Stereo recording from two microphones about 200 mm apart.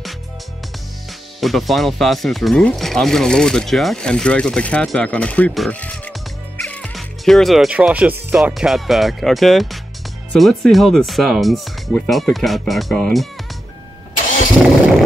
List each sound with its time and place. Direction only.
1.4 s speech: centre (ahead or behind)
14.6 s speech: centre (ahead or behind)